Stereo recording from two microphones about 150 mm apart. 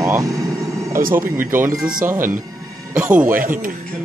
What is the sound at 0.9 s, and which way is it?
Speech, 70° right (ahead or behind).